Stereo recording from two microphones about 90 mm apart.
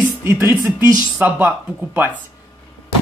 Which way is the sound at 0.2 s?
25° right (ahead or behind).